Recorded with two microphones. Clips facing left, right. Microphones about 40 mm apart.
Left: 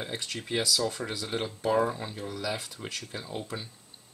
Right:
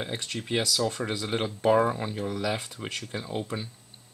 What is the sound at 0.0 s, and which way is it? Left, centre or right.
Speech, centre.